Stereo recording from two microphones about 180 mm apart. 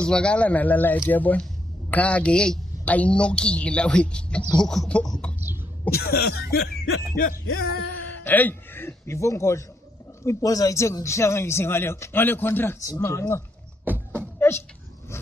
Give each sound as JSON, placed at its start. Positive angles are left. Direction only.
{"t": 0.0, "sound": "speech", "side_deg": 5}
{"t": 5.9, "sound": "speech", "side_deg": 60}
{"t": 8.1, "sound": "speech", "side_deg": 10}
{"t": 13.8, "sound": "a sound", "side_deg": -10}